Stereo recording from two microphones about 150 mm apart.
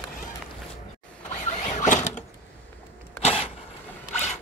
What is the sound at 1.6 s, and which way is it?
Printer, 55° left (ahead or behind).